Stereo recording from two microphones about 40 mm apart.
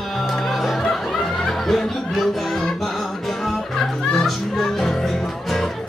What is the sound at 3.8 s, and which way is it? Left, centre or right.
Music, centre.